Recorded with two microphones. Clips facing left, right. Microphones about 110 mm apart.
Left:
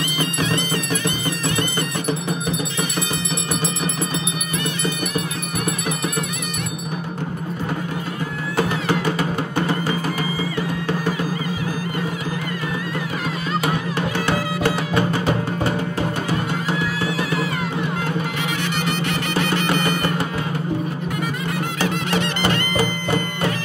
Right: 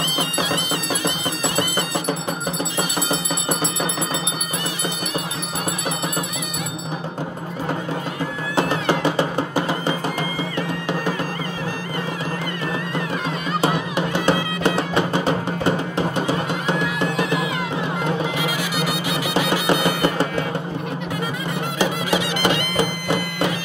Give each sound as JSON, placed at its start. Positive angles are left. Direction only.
{"t": 0.2, "sound": "music", "side_deg": -15}
{"t": 13.9, "sound": "music", "side_deg": -20}
{"t": 17.2, "sound": "music", "side_deg": 0}
{"t": 21.7, "sound": "music", "side_deg": -15}